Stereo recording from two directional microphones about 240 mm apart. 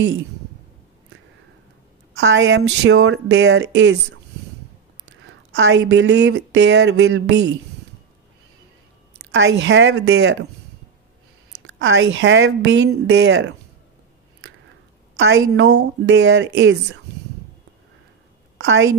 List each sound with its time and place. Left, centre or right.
2.1 s speech: right
5.6 s speech: right
9.3 s speech: right
11.8 s speech: right
15.1 s speech: right
18.6 s a woman's voice: right